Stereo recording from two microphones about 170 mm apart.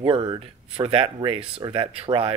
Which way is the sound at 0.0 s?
30° right (ahead or behind).